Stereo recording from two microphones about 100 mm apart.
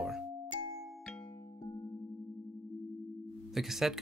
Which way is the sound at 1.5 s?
45° left (ahead or behind).